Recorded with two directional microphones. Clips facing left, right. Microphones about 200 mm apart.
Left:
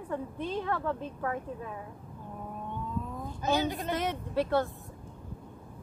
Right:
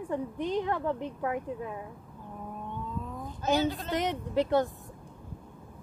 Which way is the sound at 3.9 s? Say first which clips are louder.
Right 2 dB; 15° right (ahead or behind).